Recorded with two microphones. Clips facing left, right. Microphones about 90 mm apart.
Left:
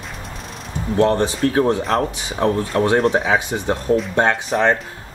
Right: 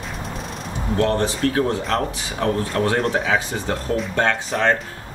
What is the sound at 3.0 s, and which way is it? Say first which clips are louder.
Speech: left 4 dB; centre (ahead or behind).